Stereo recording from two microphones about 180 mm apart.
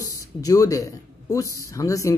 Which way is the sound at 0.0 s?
20° left (ahead or behind).